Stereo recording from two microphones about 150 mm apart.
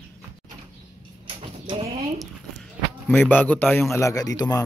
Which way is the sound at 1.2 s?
35° right (ahead or behind).